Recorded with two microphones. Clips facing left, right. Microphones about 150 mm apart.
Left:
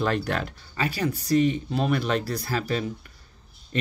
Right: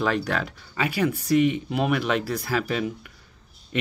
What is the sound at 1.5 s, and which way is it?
Speech, 10° right (ahead or behind).